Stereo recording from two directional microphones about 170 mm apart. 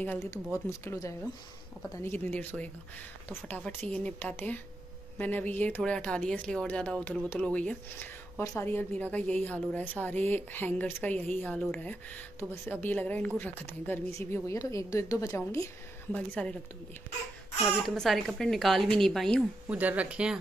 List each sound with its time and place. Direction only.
0.0 s speech: 15° left (ahead or behind)
16.4 s speech: 5° left (ahead or behind)
17.8 s a woman's voice: centre (ahead or behind)
19.7 s speech: 10° right (ahead or behind)